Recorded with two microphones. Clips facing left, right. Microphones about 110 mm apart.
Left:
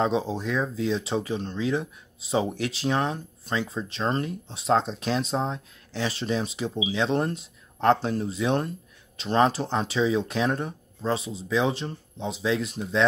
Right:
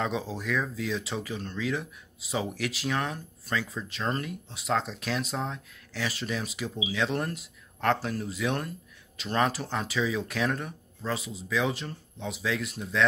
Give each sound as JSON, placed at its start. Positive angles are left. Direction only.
{"t": 0.0, "sound": "speech", "side_deg": 25}